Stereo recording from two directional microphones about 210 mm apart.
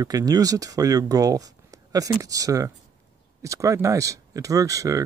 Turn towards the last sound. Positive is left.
turn(degrees=-15)  # may be behind; listen again after turning